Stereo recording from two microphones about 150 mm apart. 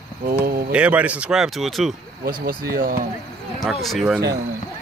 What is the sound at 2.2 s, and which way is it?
Speech, 70° right (ahead or behind).